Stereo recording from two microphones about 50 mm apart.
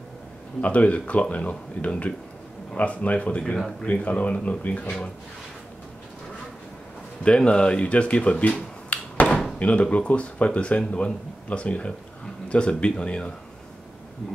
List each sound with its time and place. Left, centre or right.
0.6 s speech: left
7.2 s speech: centre
9.1 s drawer open or close: left
9.6 s speech: left